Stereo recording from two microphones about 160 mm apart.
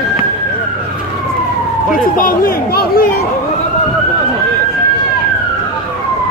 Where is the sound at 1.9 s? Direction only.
60° left (ahead or behind).